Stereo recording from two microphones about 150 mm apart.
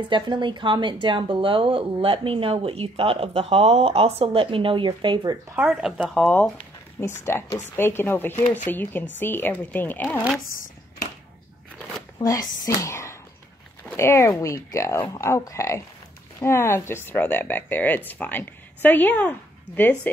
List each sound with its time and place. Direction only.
0.1 s speech: 30° right (ahead or behind)
5.6 s speech: 5° right (ahead or behind)
6.1 s speech: 5° left (ahead or behind)
12.2 s speech: 25° left (ahead or behind); by 20.1 s 10° left (ahead or behind)